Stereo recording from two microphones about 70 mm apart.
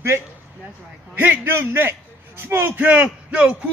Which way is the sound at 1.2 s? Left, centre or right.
Right.